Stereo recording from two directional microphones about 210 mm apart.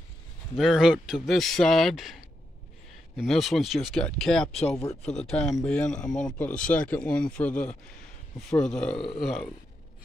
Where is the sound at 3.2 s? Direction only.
Centre (ahead or behind).